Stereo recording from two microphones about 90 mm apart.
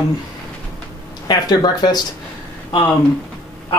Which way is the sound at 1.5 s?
50° left (ahead or behind).